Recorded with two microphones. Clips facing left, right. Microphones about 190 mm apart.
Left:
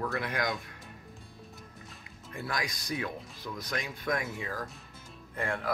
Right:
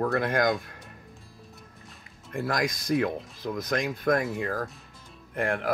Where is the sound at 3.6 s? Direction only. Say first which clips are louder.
Right 9 dB; 50° right (ahead or behind).